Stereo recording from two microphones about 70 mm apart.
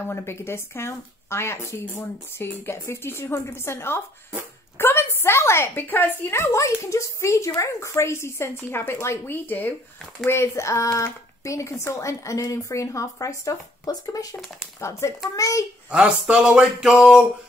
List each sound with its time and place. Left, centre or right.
0.0 s a woman's voice: left
10.2 s a woman's voice: left
14.8 s a woman's voice: left
15.9 s a sound: centre